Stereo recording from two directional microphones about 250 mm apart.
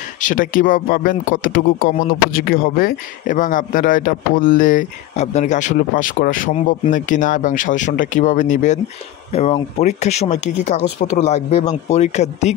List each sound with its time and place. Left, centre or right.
0.2 s speech: left